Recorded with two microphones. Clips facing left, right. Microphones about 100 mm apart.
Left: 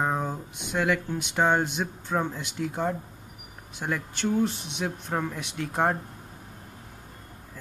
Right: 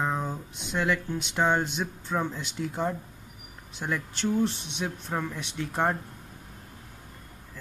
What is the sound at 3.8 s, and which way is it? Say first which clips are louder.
Speech: left 1 dB; 10° left (ahead or behind).